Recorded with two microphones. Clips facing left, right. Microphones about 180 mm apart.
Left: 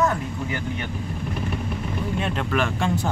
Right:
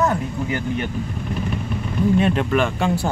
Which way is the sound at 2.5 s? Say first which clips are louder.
Right 4 dB; centre (ahead or behind).